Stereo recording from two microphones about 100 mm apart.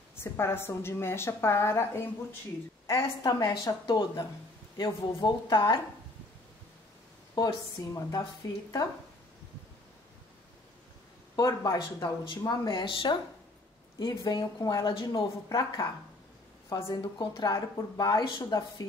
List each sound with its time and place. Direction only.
0.1 s a woman's voice: 25° left (ahead or behind)
3.3 s a woman's voice: 35° left (ahead or behind)
7.3 s a woman's voice: 40° left (ahead or behind)
11.3 s speech: 40° left (ahead or behind)
12.8 s a woman's voice: 55° left (ahead or behind)
13.9 s a woman's voice: 40° left (ahead or behind)
16.6 s a woman's voice: 30° left (ahead or behind)
16.9 s speech: 45° left (ahead or behind)